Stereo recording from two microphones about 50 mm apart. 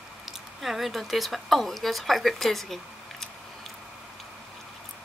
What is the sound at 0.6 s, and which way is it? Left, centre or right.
Speech, centre.